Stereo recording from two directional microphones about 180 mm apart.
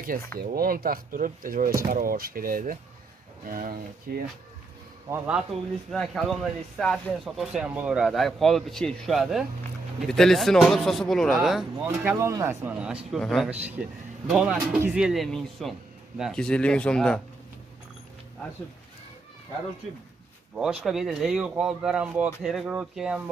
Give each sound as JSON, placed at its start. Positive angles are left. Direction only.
{"t": 0.4, "sound": "speech", "side_deg": -55}
{"t": 5.1, "sound": "a man's voice", "side_deg": -10}
{"t": 5.9, "sound": "speech", "side_deg": 0}
{"t": 11.8, "sound": "a man's voice", "side_deg": -15}
{"t": 20.5, "sound": "speech", "side_deg": -5}